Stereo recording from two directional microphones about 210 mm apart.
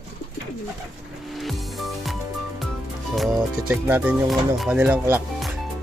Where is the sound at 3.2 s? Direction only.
Centre (ahead or behind).